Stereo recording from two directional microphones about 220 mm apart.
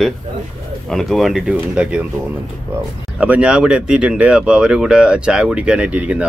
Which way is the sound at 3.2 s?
5° right (ahead or behind).